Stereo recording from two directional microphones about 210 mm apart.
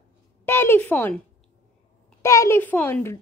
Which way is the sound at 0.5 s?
10° left (ahead or behind).